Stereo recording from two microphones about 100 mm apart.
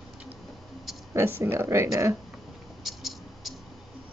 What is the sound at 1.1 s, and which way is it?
Speech, 25° right (ahead or behind).